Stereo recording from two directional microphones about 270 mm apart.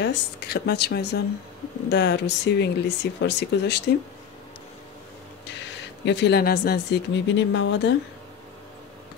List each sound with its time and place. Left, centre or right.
0.0 s speech: left
6.0 s speech: left